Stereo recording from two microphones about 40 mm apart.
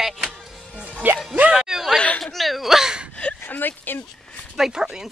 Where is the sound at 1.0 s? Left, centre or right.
Right.